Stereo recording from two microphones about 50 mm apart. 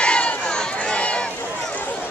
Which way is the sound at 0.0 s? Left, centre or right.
Left.